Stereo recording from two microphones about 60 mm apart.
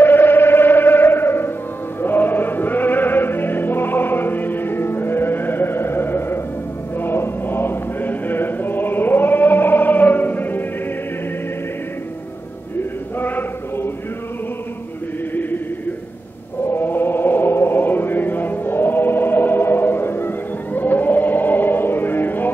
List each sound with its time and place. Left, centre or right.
0.0 s music: left
7.0 s chant: left
13.2 s chant: left
16.6 s chant: left